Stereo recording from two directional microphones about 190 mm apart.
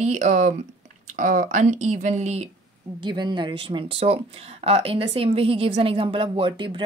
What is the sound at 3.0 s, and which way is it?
Speech, 25° right (ahead or behind).